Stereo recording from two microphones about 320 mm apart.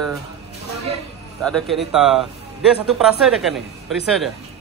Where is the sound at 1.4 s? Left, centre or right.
Centre.